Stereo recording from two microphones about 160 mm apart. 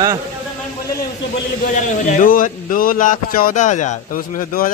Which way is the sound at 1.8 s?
50° left (ahead or behind).